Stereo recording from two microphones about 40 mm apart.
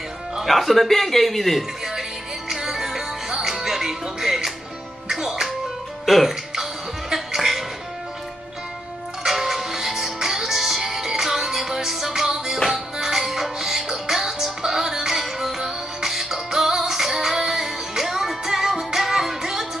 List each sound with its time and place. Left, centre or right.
0.4 s a man's voice: centre
2.5 s music: centre
6.0 s speech: centre
6.5 s music: centre
9.2 s music: centre